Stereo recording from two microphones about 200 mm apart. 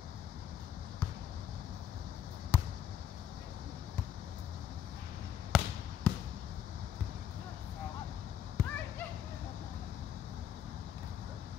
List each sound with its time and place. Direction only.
2.5 s fireworks: 10° left (ahead or behind)
5.5 s basketball bounce: centre (ahead or behind)
8.6 s a sound: 15° right (ahead or behind)